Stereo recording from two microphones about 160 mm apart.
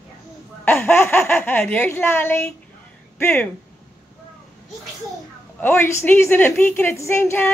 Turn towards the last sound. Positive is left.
turn(degrees=15)  # may be behind; listen again after turning